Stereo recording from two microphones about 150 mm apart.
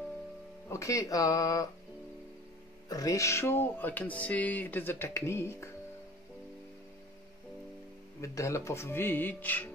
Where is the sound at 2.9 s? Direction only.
20° left (ahead or behind).